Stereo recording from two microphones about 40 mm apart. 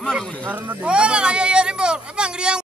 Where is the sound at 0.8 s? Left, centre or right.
Right.